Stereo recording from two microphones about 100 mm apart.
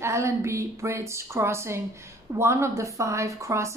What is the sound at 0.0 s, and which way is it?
A woman's voice, 30° right (ahead or behind).